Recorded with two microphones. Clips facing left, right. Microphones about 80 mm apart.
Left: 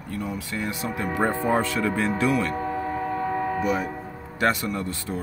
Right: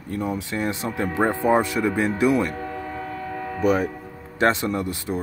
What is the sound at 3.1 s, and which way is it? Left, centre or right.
Train horn, left.